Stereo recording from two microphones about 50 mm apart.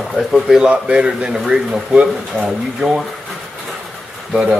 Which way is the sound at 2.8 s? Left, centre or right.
Centre.